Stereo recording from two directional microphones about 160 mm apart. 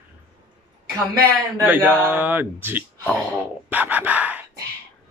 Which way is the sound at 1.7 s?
10° right (ahead or behind).